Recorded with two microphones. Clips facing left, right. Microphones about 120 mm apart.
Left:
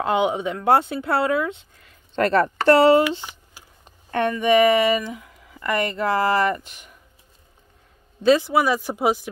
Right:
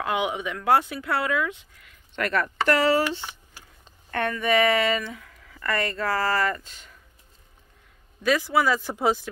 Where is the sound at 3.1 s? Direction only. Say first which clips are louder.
Left 2 dB; 10° left (ahead or behind).